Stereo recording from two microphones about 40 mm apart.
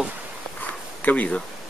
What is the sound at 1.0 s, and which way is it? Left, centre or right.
Speech, left.